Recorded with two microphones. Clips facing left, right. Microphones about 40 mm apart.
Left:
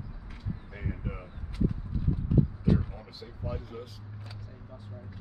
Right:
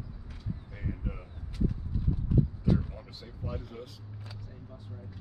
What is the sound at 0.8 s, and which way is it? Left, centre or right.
Speech, left.